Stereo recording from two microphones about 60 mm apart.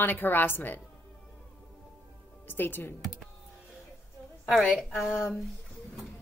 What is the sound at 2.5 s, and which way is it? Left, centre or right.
Speech, left.